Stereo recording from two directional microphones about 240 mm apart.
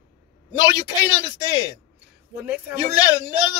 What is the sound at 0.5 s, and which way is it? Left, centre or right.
Speech, centre.